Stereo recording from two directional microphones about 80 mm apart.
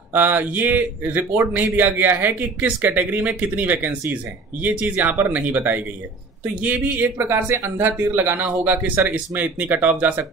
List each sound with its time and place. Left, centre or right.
0.1 s speech: right